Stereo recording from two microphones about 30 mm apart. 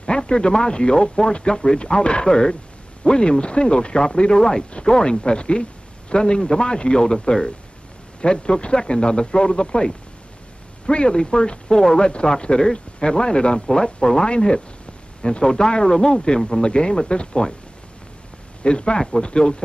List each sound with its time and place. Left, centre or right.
0.3 s a man's voice: left
8.2 s a man's voice: left
11.7 s speech: centre
12.0 s a man's voice: left
18.6 s a man's voice: left